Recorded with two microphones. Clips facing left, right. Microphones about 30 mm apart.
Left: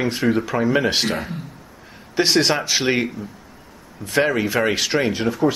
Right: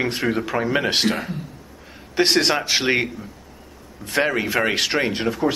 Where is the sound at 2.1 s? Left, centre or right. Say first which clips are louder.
Even; centre.